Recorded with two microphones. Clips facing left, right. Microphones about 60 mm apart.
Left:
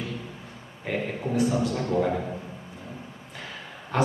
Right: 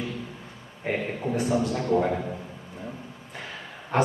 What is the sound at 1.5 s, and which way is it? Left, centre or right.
Speech, centre.